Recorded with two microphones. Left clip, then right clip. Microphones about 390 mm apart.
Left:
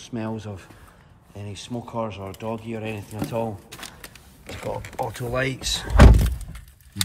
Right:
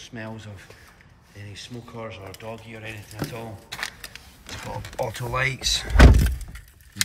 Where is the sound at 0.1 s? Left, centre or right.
Left.